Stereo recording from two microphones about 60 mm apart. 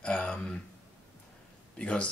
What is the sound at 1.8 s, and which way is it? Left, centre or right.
Speech, centre.